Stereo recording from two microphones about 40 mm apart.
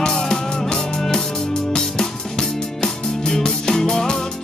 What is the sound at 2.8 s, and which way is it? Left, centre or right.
Music, centre.